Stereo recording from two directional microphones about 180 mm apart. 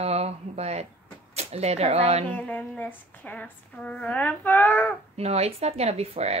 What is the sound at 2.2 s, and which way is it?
Speech, 10° left (ahead or behind).